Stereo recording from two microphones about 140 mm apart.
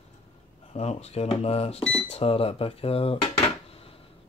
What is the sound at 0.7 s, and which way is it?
Speech, 50° left (ahead or behind).